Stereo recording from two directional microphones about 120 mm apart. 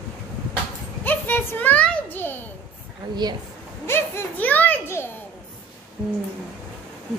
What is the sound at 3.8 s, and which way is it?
A child's voice, 20° left (ahead or behind).